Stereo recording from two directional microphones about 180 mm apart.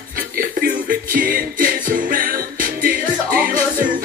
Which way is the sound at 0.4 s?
50° right (ahead or behind).